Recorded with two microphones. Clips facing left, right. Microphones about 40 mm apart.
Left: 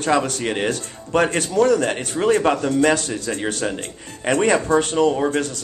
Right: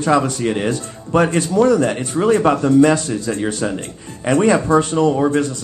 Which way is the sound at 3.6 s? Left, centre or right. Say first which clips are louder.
Right 2 dB; centre.